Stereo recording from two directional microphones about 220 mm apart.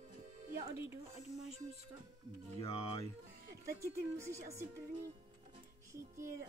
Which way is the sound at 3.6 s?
15° right (ahead or behind).